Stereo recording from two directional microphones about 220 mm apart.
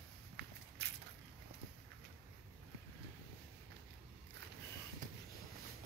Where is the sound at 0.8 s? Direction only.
50° right (ahead or behind).